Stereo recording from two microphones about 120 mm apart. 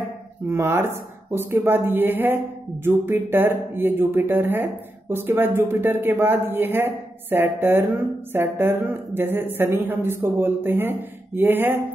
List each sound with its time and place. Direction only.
0.5 s speech: 20° right (ahead or behind)